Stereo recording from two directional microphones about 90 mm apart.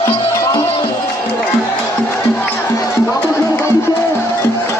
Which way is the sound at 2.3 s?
20° left (ahead or behind).